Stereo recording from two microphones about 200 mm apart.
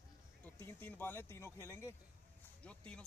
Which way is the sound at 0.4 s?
10° left (ahead or behind).